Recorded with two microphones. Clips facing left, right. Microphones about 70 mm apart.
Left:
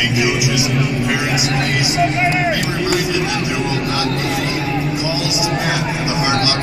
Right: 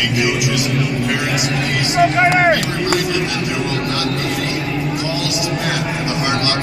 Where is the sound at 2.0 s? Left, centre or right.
Right.